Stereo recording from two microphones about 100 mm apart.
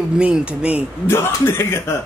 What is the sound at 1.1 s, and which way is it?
Speech, 25° left (ahead or behind).